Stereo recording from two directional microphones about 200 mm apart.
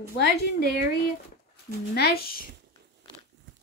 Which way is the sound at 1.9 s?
50° left (ahead or behind).